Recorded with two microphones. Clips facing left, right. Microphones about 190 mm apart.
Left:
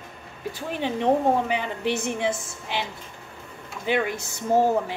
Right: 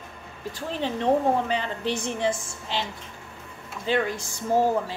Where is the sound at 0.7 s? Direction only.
15° left (ahead or behind).